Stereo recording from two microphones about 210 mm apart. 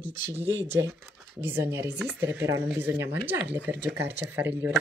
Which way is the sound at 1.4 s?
10° right (ahead or behind).